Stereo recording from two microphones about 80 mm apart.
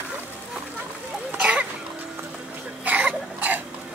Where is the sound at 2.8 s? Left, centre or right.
Centre.